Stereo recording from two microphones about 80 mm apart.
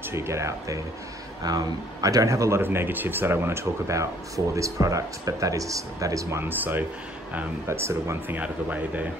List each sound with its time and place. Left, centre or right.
0.1 s speech: right
1.4 s speech: right
2.6 s speech: right
6.6 s speech: right
7.6 s speech: right
8.4 s speech: centre